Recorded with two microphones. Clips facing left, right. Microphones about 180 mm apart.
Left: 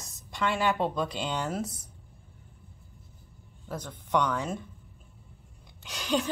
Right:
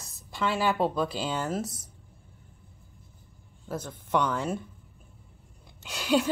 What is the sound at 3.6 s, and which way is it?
Speech, 5° right (ahead or behind).